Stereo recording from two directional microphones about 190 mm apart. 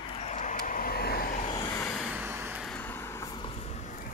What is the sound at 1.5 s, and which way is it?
Vehicle, 15° left (ahead or behind).